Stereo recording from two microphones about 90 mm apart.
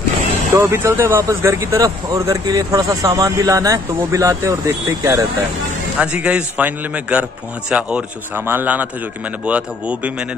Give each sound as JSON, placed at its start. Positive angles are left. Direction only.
{"t": 0.6, "sound": "speech", "side_deg": -25}
{"t": 5.9, "sound": "a man's voice", "side_deg": -15}